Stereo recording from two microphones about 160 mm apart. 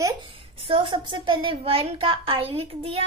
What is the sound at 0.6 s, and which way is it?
A child's voice, 30° right (ahead or behind).